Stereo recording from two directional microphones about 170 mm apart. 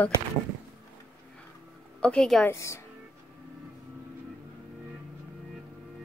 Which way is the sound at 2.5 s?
15° left (ahead or behind).